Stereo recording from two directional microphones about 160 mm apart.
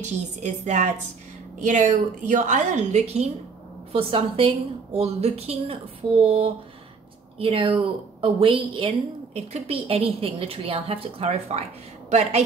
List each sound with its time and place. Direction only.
0.0 s a woman's voice: 45° right (ahead or behind)